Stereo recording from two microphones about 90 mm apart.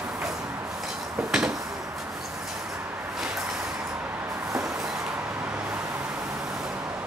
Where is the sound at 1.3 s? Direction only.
5° right (ahead or behind).